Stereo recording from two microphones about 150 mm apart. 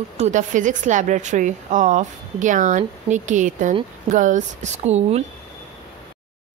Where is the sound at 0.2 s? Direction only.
55° right (ahead or behind).